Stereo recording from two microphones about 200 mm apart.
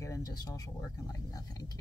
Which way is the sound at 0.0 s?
15° left (ahead or behind).